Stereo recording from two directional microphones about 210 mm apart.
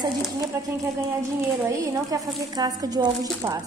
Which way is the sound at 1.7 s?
15° right (ahead or behind).